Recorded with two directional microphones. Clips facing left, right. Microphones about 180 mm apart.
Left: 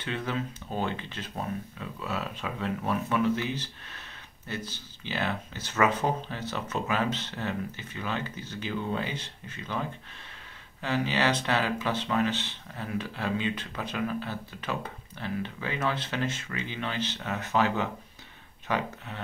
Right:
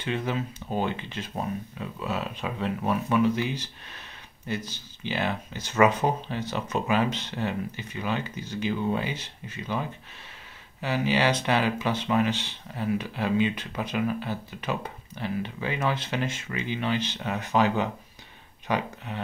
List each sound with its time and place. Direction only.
0.0 s speech: 10° right (ahead or behind)
10.8 s speech: 10° right (ahead or behind)